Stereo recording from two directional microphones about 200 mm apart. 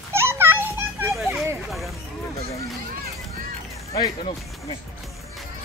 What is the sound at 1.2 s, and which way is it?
Speech, centre (ahead or behind).